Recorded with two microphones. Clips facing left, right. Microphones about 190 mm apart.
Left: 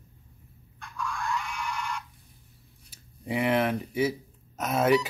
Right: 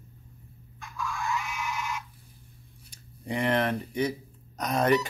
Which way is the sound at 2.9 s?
5° left (ahead or behind).